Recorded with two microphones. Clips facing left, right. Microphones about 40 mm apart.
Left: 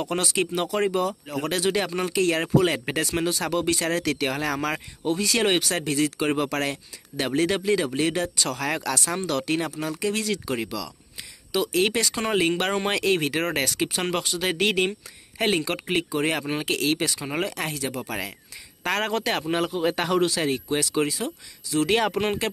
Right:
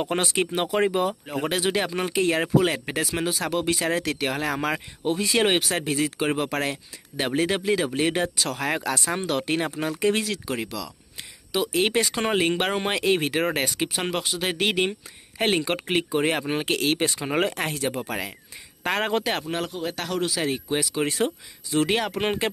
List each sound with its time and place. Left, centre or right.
0.0 s speech: right
1.5 s speech: centre; by 10.2 s right
10.2 s speech: centre
11.5 s speech: centre; by 18.1 s right
18.9 s speech: centre
19.4 s speech: centre
20.2 s speech: centre
21.9 s speech: centre
22.2 s speech: centre